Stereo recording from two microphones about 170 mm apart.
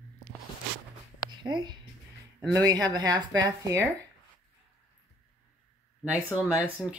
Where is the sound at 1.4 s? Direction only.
25° right (ahead or behind).